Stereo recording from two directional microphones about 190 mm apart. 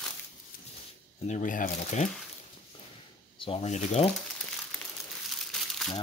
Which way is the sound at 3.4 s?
30° left (ahead or behind).